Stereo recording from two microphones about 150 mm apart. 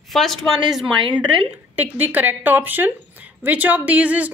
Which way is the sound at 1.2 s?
35° right (ahead or behind).